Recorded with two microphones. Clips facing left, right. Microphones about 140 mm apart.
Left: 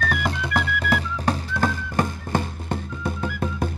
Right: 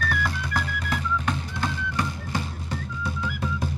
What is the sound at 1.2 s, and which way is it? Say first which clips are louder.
Music: left 5 dB; 45° left (ahead or behind).